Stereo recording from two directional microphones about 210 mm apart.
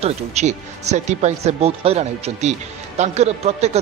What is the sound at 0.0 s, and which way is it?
A man's voice, 30° right (ahead or behind).